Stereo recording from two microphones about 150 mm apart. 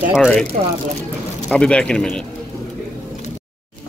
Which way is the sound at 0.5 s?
50° right (ahead or behind).